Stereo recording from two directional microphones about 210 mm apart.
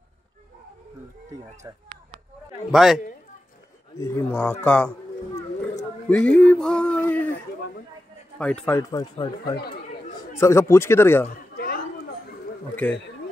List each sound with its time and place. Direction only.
2.7 s speech: centre (ahead or behind)
4.0 s speech: 10° left (ahead or behind)
6.0 s speech: 5° left (ahead or behind)
8.4 s speech: 5° left (ahead or behind)
9.1 s speech: 20° left (ahead or behind)
11.5 s a sound: 45° left (ahead or behind)
12.8 s speech: 5° left (ahead or behind)